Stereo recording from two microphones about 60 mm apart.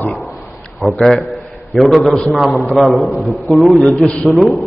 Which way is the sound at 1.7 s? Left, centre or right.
Centre.